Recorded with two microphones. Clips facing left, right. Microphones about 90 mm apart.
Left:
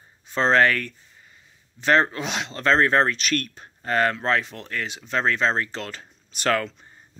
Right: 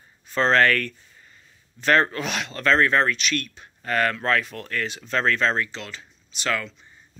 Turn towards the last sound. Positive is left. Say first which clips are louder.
# left 4 dB
turn(degrees=45)  # may be behind; listen again after turning